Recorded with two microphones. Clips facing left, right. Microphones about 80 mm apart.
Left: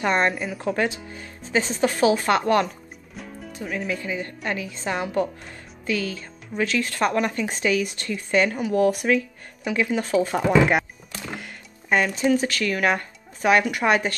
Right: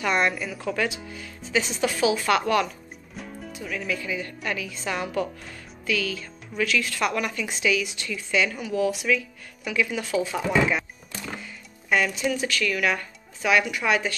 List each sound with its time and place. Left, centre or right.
0.0 s speech: left
3.2 s music: centre
3.5 s a woman's voice: left
9.7 s speech: left
11.9 s speech: left